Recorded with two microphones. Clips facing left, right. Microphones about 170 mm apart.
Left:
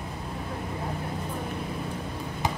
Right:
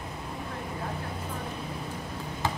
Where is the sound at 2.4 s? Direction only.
15° left (ahead or behind).